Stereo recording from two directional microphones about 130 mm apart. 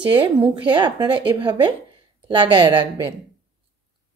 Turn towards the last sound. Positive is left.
turn(degrees=-40)  # may be behind; listen again after turning